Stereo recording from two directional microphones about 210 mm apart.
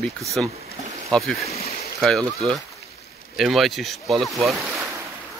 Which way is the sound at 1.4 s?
30° left (ahead or behind).